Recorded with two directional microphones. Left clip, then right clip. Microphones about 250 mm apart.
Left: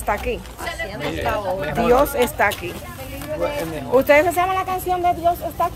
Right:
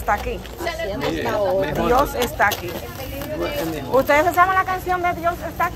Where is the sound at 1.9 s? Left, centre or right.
Centre.